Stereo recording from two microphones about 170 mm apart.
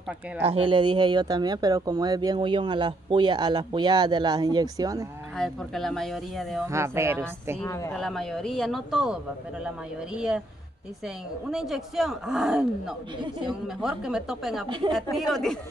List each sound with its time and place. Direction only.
0.4 s speech: 35° right (ahead or behind)
5.4 s speech: centre (ahead or behind)
6.7 s a woman's voice: 15° right (ahead or behind)
7.6 s speech: 15° left (ahead or behind)
7.9 s speech: centre (ahead or behind)
11.5 s speech: centre (ahead or behind)